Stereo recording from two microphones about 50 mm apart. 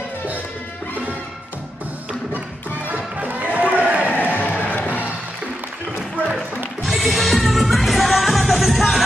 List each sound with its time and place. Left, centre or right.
2.9 s music: right
4.1 s music: left
6.3 s music: centre